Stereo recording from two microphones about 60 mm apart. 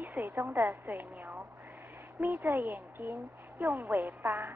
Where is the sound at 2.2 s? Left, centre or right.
Right.